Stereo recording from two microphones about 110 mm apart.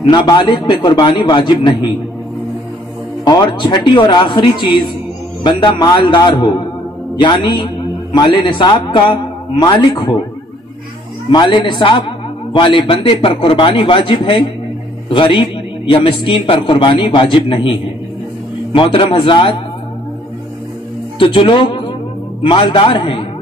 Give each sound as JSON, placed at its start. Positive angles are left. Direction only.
{"t": 0.1, "sound": "a man's voice", "side_deg": 40}
{"t": 3.3, "sound": "a man's voice", "side_deg": 45}
{"t": 11.2, "sound": "a man's voice", "side_deg": 45}
{"t": 21.2, "sound": "a man's voice", "side_deg": 50}